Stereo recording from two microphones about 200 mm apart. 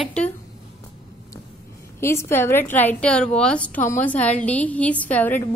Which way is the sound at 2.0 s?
15° left (ahead or behind).